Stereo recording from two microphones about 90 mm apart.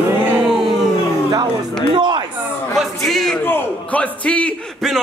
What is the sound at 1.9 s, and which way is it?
Speech, 60° right (ahead or behind).